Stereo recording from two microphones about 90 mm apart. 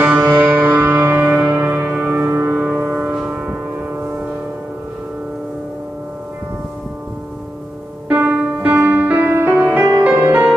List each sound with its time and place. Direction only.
0.0 s music: 15° right (ahead or behind)
2.6 s music: 10° right (ahead or behind)
8.1 s music: 25° right (ahead or behind)